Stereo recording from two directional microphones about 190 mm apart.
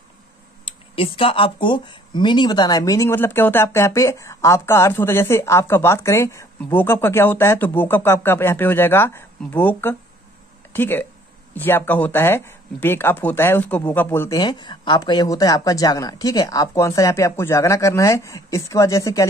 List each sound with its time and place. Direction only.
0.9 s speech: 30° left (ahead or behind)